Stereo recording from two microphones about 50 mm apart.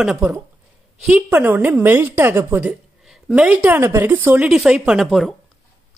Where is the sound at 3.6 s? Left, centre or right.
Right.